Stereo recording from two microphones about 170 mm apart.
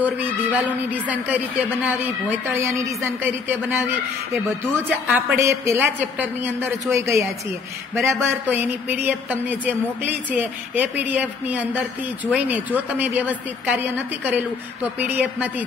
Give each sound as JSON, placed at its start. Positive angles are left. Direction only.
{"t": 0.0, "sound": "a woman's voice", "side_deg": -10}
{"t": 2.4, "sound": "a woman's voice", "side_deg": -15}
{"t": 4.8, "sound": "a woman's voice", "side_deg": -10}